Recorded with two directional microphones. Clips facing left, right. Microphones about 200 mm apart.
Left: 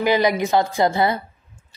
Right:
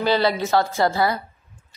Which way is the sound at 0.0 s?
15° left (ahead or behind).